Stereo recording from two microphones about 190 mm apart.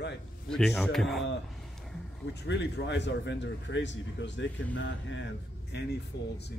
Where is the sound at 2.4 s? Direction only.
65° left (ahead or behind).